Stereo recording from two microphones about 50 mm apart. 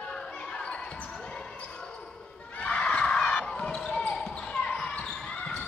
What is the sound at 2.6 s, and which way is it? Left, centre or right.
Basketball bounce, left.